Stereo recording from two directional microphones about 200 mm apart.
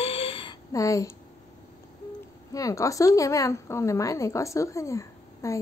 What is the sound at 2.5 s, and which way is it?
Speech, 15° left (ahead or behind).